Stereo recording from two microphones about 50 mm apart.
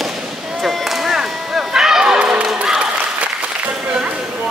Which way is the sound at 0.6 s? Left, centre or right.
Centre.